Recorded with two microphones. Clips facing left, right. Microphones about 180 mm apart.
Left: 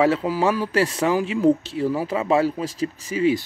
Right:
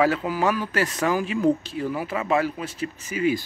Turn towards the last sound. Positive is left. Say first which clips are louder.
# left 3 dB
turn(degrees=30)  # may be behind; listen again after turning